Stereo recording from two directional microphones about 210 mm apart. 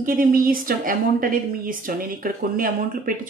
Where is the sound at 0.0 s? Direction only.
40° right (ahead or behind).